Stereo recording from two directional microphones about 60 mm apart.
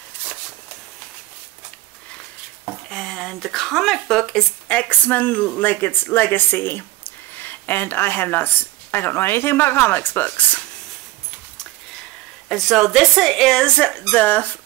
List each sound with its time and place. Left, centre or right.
2.9 s speech: centre
4.6 s speech: left
12.4 s speech: centre; by 14.6 s left